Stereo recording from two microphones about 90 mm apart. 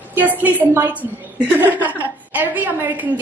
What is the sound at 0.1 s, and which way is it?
Speech, 20° right (ahead or behind).